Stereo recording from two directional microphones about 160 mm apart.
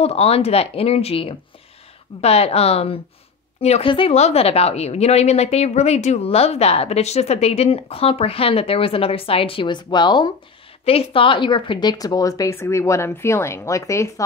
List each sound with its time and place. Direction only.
0.0 s a woman's voice: 40° left (ahead or behind); by 14.2 s 20° left (ahead or behind)